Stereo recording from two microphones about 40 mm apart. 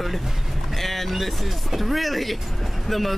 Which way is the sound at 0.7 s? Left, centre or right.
Centre.